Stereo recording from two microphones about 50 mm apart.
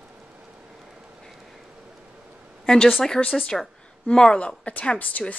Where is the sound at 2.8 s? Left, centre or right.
Centre.